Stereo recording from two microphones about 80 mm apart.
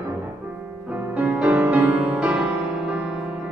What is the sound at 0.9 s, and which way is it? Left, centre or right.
Music, centre.